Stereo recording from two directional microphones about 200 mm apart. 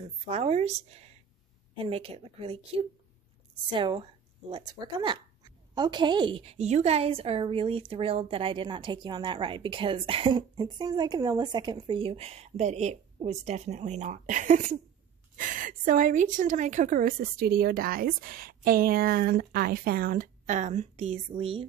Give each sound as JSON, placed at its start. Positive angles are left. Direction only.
{"t": 0.3, "sound": "a woman's voice", "side_deg": -30}